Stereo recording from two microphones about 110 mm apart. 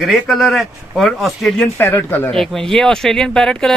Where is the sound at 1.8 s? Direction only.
20° left (ahead or behind).